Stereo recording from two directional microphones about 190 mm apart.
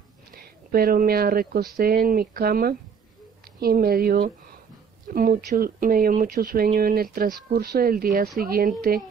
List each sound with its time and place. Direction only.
0.4 s speech: 50° right (ahead or behind)